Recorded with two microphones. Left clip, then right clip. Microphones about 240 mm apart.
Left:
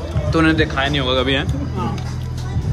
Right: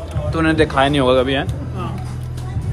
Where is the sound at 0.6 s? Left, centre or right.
Centre.